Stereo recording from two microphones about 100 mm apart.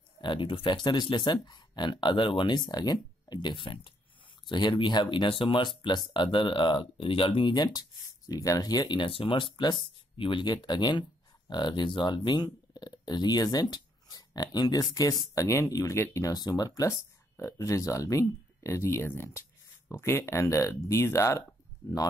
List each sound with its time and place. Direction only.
0.2 s speech: 55° left (ahead or behind)
7.5 s speech: 40° left (ahead or behind)